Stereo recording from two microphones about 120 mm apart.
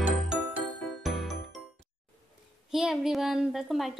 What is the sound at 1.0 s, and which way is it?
Music, centre (ahead or behind).